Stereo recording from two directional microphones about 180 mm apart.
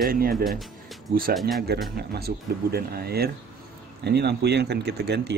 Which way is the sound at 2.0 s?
60° right (ahead or behind).